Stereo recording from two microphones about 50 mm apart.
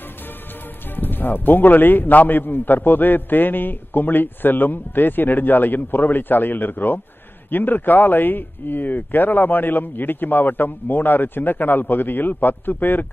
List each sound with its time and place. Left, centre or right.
0.9 s a man's voice: left